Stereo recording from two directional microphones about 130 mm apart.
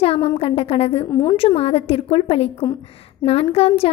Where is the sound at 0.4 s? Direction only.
45° left (ahead or behind).